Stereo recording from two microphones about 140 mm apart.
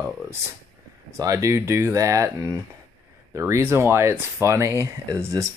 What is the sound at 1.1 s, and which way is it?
Speech, 20° right (ahead or behind).